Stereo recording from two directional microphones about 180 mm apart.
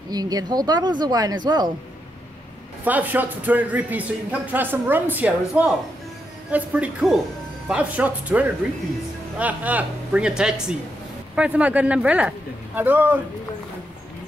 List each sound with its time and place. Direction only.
0.1 s speech: 20° right (ahead or behind)
2.8 s speech: 10° right (ahead or behind)